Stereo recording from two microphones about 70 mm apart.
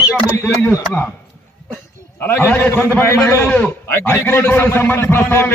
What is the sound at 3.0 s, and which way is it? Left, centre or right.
A man's voice, left.